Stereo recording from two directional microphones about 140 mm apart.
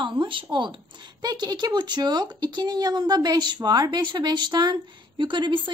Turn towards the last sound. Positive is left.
turn(degrees=-35)  # may be behind; listen again after turning